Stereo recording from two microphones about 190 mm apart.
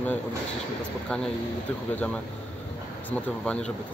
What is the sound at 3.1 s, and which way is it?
Speech, 5° left (ahead or behind).